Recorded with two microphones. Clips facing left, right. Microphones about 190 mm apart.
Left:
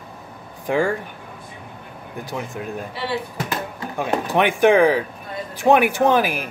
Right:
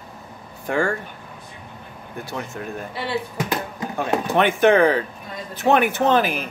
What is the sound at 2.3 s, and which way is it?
Speech, 15° left (ahead or behind).